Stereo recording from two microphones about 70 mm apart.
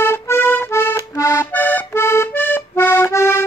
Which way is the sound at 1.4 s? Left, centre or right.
Left.